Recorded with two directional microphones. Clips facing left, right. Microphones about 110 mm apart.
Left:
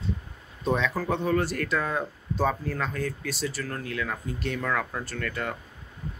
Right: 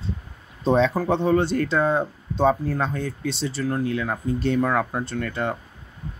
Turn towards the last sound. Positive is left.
turn(degrees=-25)  # may be behind; listen again after turning